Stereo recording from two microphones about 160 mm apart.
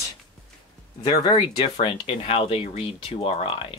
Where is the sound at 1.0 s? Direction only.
25° left (ahead or behind).